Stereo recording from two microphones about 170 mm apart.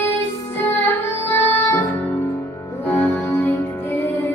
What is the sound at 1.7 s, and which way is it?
Music, 15° left (ahead or behind).